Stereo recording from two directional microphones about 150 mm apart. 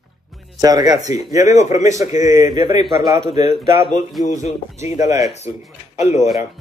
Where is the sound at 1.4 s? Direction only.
50° left (ahead or behind).